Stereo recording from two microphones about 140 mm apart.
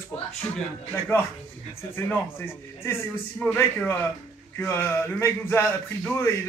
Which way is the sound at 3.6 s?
15° left (ahead or behind).